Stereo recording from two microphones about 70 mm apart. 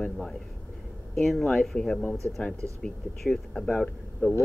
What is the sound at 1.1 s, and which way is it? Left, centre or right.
Speech, centre.